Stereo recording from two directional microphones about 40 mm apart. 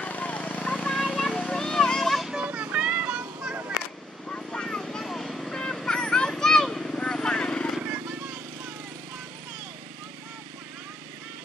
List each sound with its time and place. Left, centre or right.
0.0 s vehicle: left
0.9 s a sound: centre
2.4 s vehicle: right
4.3 s vehicle: left
5.0 s vehicle: centre; by 7.7 s left